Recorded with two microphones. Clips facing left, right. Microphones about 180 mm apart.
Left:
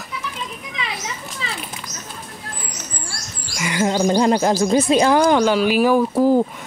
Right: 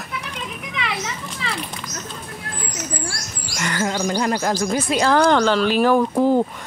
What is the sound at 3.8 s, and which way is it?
Bird, 20° left (ahead or behind).